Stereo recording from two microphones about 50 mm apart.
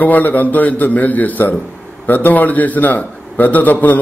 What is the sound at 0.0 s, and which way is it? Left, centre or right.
A man's voice, left.